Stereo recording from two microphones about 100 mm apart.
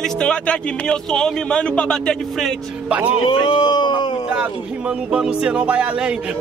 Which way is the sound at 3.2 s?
55° left (ahead or behind).